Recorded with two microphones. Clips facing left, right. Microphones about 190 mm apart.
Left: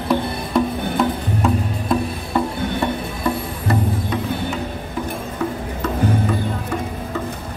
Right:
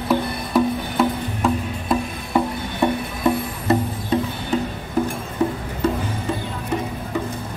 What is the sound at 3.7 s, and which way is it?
Music, 25° right (ahead or behind).